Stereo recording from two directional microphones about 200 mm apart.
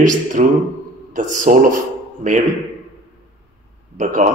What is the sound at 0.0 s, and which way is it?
Speech, 40° right (ahead or behind).